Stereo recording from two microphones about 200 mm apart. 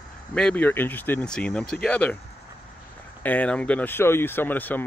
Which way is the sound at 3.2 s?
5° left (ahead or behind).